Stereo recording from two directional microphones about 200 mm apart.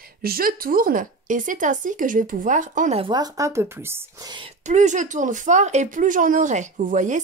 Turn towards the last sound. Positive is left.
turn(degrees=-40)  # may be behind; listen again after turning